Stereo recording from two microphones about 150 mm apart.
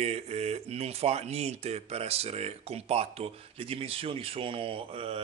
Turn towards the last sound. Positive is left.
turn(degrees=-40)  # may be behind; listen again after turning